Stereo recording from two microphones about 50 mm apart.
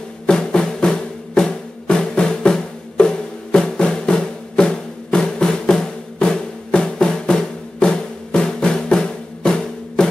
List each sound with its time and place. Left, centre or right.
0.3 s music: centre